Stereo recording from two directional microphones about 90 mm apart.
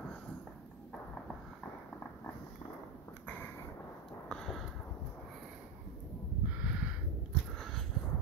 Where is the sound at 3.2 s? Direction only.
20° left (ahead or behind).